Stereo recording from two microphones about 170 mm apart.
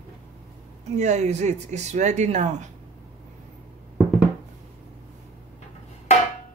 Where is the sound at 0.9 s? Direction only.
45° right (ahead or behind).